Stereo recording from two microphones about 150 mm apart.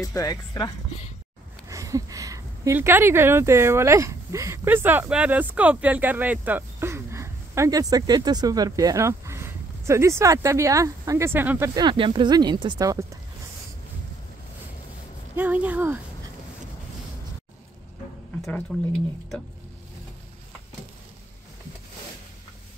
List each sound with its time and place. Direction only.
0.0 s speech: 20° left (ahead or behind)
1.7 s speech: 20° right (ahead or behind)
11.7 s speech: 30° right (ahead or behind)
15.3 s speech: 10° right (ahead or behind)
18.7 s speech: 5° left (ahead or behind)